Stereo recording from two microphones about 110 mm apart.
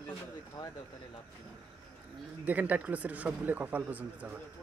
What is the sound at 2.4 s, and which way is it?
Speech, 15° right (ahead or behind).